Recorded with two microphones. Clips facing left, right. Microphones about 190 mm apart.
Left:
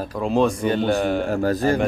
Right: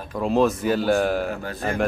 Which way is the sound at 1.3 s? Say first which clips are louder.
Left 8 dB; 40° left (ahead or behind).